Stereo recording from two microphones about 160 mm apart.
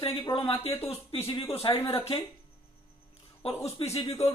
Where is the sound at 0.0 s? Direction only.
35° left (ahead or behind).